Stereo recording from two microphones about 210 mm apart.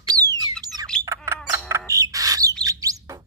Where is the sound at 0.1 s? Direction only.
15° right (ahead or behind).